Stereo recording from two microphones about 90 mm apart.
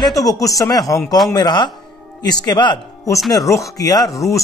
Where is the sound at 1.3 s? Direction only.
55° left (ahead or behind).